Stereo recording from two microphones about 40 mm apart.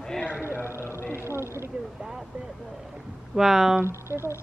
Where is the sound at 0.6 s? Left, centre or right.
Left.